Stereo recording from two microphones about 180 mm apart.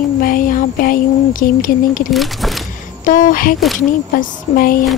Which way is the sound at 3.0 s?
45° left (ahead or behind).